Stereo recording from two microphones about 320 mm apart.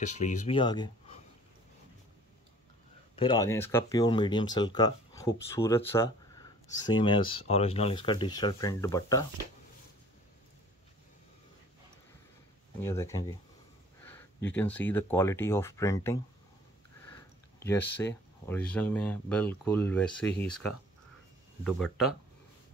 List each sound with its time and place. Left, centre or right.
0.0 s speech: left
3.2 s speech: centre
12.8 s speech: centre
17.6 s speech: centre